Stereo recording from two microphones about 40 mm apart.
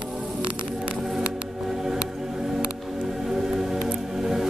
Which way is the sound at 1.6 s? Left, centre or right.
Centre.